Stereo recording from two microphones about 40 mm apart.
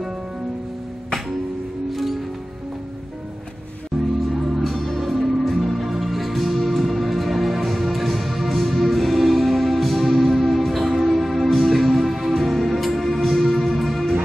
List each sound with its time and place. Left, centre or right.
1.9 s music: centre
4.6 s music: centre